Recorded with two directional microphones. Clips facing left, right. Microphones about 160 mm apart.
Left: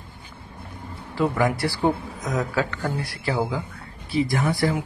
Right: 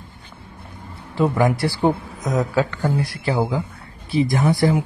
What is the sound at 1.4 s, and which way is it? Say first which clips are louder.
Speech: right 3 dB; 25° right (ahead or behind).